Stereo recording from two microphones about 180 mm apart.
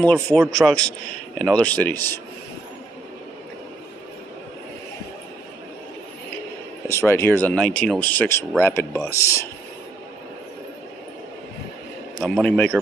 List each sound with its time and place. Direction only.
0.0 s a man's voice: 10° left (ahead or behind)
6.9 s speech: 15° left (ahead or behind)
12.2 s a man's voice: 5° left (ahead or behind)